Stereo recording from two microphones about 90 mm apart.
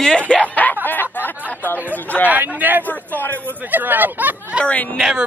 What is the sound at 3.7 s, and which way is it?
Speech, 20° right (ahead or behind).